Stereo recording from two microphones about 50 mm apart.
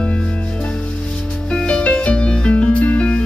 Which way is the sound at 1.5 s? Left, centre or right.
Centre.